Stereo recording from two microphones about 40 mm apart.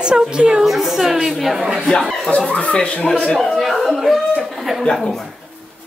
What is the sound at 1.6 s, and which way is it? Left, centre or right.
Speech, centre.